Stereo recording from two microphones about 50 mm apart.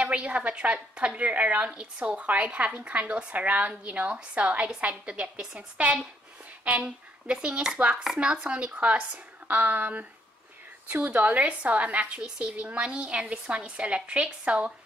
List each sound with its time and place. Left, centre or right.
0.0 s a woman's voice: right
9.6 s a woman's voice: right